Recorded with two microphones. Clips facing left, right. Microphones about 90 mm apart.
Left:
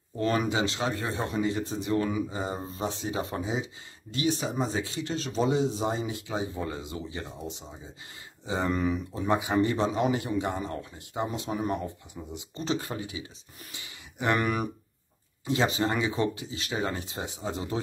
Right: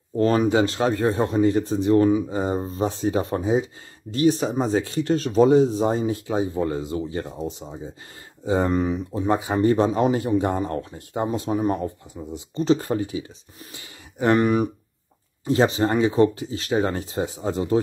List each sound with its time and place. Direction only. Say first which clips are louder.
0.2 s speech: right 8 dB; 35° right (ahead or behind)
0.6 s speech: right 8 dB; 45° right (ahead or behind)
8.5 s speech: right 6 dB; 40° right (ahead or behind)
11.2 s speech: right 8 dB; 35° right (ahead or behind)